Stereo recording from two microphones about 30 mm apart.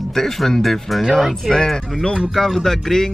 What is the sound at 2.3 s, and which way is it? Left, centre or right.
Speech, centre.